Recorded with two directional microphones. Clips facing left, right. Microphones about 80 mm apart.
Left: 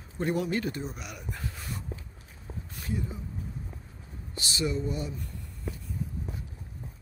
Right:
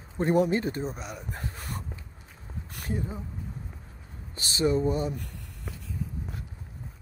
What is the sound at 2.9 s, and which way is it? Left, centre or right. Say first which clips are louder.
Speech: right 2 dB; right.